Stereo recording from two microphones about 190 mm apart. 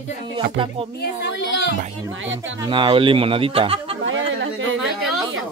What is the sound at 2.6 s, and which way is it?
Speech, 25° right (ahead or behind).